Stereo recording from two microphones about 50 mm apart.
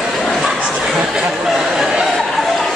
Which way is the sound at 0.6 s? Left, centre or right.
Right.